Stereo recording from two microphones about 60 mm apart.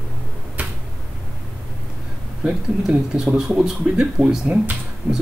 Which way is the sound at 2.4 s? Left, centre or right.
Centre.